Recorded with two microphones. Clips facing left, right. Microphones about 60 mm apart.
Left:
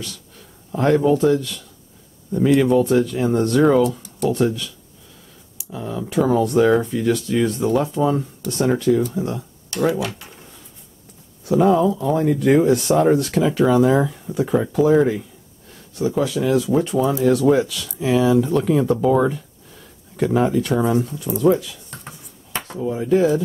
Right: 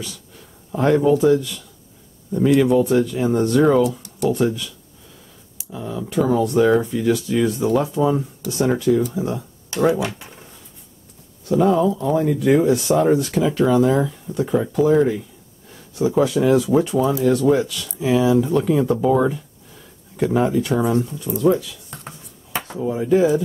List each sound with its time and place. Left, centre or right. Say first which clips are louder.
0.7 s speech: even; centre
9.7 s speech: right 2 dB; centre
11.4 s speech: left 1 dB; centre
15.7 s speech: right 2 dB; centre
22.0 s writing: right 1 dB; centre